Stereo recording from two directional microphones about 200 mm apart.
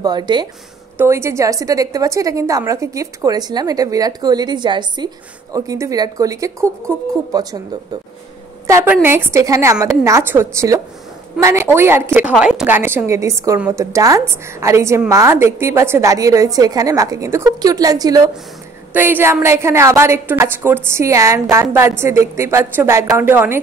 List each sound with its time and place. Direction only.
0.0 s a woman's voice: 20° right (ahead or behind)
8.6 s a woman's voice: 10° right (ahead or behind)